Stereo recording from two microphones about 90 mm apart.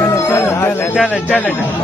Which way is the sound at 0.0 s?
30° left (ahead or behind).